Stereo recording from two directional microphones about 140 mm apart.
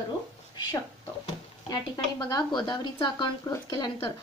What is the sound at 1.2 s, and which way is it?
Speech, 30° left (ahead or behind).